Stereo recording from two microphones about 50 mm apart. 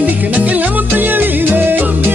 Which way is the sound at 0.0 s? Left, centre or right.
Right.